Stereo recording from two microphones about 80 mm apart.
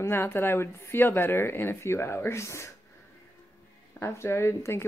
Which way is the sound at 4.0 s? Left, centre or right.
Left.